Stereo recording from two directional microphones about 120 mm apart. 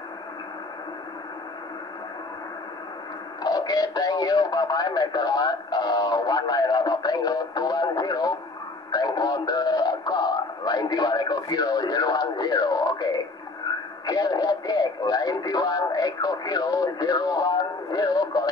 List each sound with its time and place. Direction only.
3.4 s speech: 30° left (ahead or behind)
8.9 s a sound: 35° left (ahead or behind)
14.0 s speech: 30° left (ahead or behind)